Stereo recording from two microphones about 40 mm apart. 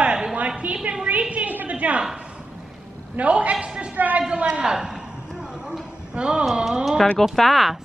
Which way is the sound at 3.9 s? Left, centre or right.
Right.